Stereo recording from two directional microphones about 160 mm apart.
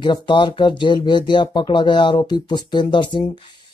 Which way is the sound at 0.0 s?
30° left (ahead or behind).